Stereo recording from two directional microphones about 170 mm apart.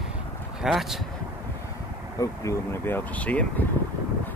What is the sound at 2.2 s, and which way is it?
Speech, 15° left (ahead or behind).